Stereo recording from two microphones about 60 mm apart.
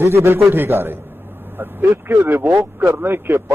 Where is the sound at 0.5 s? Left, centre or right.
Right.